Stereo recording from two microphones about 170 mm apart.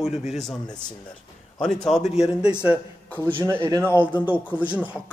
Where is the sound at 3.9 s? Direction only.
10° right (ahead or behind).